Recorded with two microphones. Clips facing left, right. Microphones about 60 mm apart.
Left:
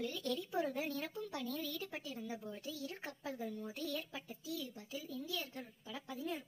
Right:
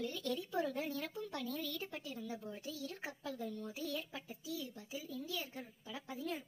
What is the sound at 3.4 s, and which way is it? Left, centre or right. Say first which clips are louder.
Speech: even; centre.